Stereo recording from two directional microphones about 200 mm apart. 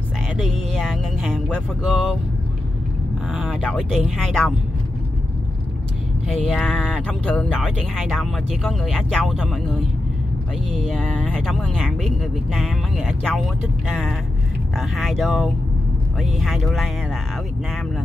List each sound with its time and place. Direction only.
0.4 s speech: centre (ahead or behind)
3.3 s speech: 5° right (ahead or behind)
6.2 s speech: 5° left (ahead or behind)